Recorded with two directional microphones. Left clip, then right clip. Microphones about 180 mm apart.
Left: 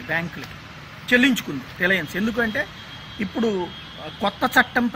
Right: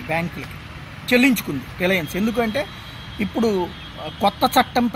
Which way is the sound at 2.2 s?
Centre (ahead or behind).